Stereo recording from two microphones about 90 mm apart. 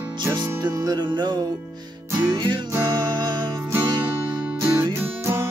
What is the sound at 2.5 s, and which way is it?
Music, 55° right (ahead or behind).